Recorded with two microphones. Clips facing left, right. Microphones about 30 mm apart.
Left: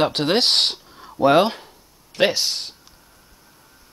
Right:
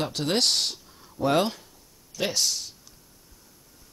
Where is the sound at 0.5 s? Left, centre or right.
Left.